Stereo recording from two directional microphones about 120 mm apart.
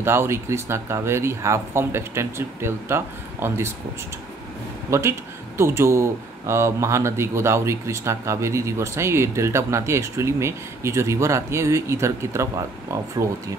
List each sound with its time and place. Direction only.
0.0 s speech: 20° right (ahead or behind)
4.9 s speech: 25° right (ahead or behind)